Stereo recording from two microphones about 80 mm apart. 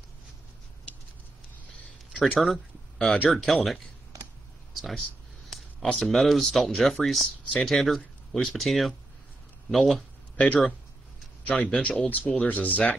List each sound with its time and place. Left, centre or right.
2.1 s speech: centre
2.4 s a sound: centre
3.3 s speech: centre
5.5 s a sound: centre
5.9 s speech: centre
10.3 s speech: centre
12.1 s speech: centre